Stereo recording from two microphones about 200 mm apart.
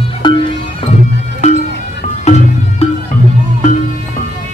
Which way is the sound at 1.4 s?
35° left (ahead or behind).